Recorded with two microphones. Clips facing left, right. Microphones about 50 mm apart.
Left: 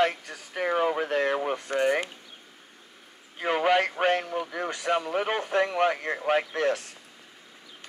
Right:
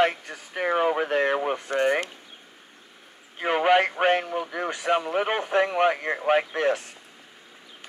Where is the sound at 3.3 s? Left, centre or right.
Right.